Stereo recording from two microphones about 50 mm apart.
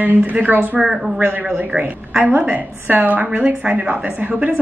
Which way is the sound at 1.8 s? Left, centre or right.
Right.